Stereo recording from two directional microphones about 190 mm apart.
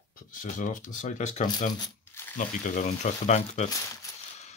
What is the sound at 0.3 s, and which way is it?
Speech, 45° left (ahead or behind).